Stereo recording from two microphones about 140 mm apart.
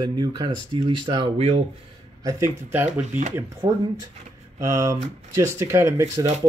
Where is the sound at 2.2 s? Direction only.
20° right (ahead or behind).